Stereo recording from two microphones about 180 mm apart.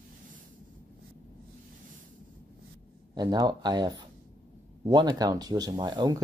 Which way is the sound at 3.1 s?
25° right (ahead or behind).